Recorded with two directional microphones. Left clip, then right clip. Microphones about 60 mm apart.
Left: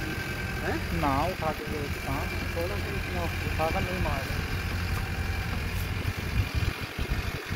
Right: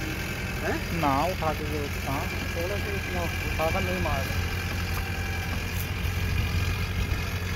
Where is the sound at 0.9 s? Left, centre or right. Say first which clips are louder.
Right 3 dB; left.